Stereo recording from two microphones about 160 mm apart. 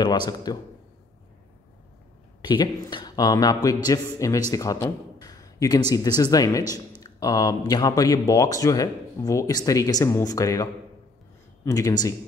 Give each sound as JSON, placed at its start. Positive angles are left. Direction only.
{"t": 0.0, "sound": "a man's voice", "side_deg": 25}
{"t": 2.4, "sound": "a man's voice", "side_deg": 25}